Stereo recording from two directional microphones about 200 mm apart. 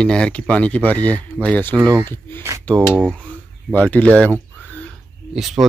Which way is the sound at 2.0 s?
10° left (ahead or behind).